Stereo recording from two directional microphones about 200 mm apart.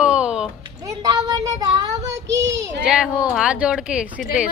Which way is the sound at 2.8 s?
5° right (ahead or behind).